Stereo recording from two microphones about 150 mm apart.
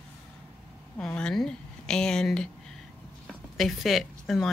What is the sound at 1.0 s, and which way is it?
Speech, 5° left (ahead or behind).